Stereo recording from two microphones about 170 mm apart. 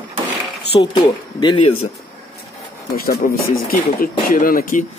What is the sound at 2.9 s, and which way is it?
Speech, 60° left (ahead or behind).